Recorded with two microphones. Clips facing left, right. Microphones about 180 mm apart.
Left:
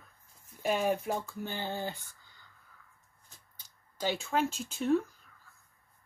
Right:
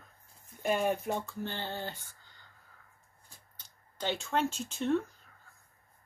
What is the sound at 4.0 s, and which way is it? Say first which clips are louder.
Speech: left 1 dB; 5° left (ahead or behind).